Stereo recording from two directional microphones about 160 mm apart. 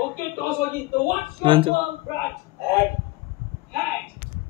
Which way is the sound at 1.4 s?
35° right (ahead or behind).